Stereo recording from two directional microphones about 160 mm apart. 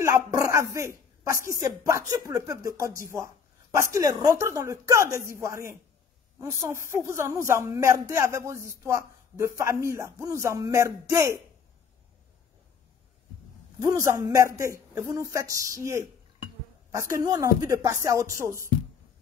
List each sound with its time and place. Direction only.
0.0 s a woman's voice: 20° right (ahead or behind)
13.7 s speech: 20° right (ahead or behind)